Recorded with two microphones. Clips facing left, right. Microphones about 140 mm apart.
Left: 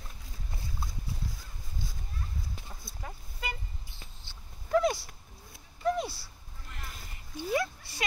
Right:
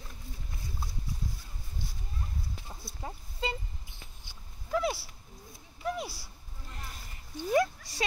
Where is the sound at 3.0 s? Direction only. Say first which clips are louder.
Right 4 dB; 25° right (ahead or behind).